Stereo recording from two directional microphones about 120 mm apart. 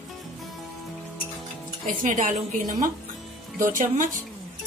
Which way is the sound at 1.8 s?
90° right.